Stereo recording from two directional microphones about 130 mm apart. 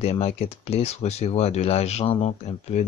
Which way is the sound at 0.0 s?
55° left (ahead or behind).